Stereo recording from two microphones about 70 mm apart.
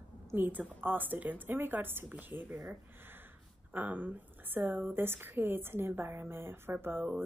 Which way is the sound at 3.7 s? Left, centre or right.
Right.